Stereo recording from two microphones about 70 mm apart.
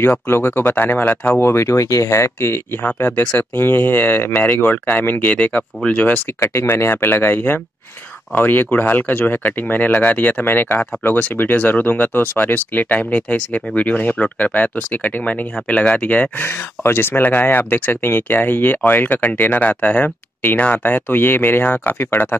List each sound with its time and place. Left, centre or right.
0.0 s speech: left
1.4 s speech: left; by 6.2 s centre
6.4 s speech: left
16.4 s speech: left